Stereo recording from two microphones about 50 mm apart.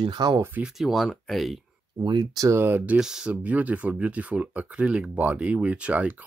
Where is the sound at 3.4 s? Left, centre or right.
Right.